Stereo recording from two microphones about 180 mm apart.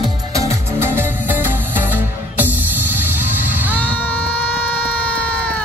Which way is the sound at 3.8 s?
10° left (ahead or behind).